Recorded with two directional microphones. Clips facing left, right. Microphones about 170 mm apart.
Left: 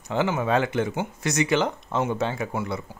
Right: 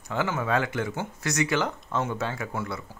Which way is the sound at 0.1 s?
20° left (ahead or behind).